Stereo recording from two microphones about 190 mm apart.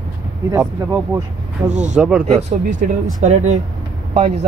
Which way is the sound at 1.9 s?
5° right (ahead or behind).